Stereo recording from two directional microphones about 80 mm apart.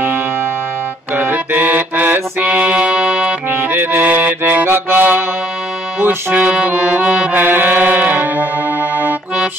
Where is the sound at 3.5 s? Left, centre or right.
Right.